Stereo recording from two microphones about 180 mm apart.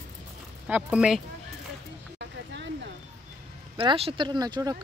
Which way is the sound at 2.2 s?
75° right (ahead or behind).